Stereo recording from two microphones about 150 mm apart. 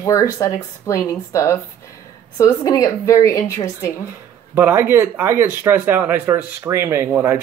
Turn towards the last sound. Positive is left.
turn(degrees=-15)  # may be behind; listen again after turning